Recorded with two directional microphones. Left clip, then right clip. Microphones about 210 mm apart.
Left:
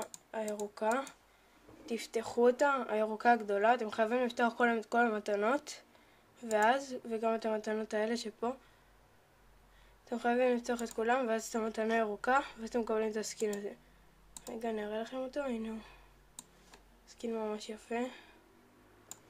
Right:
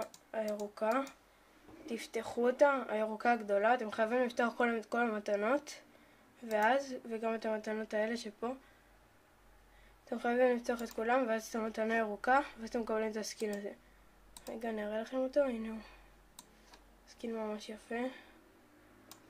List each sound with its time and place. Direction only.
0.3 s speech: 5° left (ahead or behind)
10.0 s speech: centre (ahead or behind)
17.2 s speech: 5° left (ahead or behind)